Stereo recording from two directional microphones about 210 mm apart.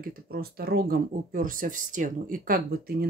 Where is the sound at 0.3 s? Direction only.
45° right (ahead or behind).